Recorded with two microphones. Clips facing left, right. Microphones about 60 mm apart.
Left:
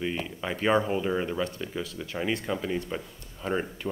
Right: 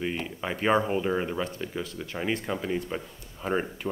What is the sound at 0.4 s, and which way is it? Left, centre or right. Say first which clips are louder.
Speech: even; centre.